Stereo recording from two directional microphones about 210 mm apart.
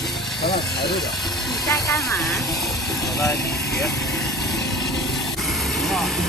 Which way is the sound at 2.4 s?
Centre (ahead or behind).